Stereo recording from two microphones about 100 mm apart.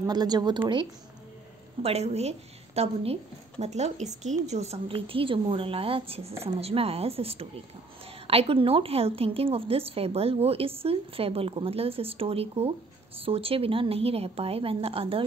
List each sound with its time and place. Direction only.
0.0 s a woman's voice: 45° right (ahead or behind)
1.8 s a woman's voice: 90° right
4.6 s a woman's voice: 80° right